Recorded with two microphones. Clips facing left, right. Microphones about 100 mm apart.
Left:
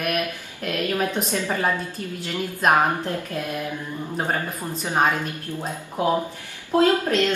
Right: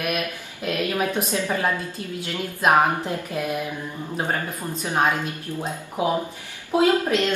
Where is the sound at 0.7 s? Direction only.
15° right (ahead or behind).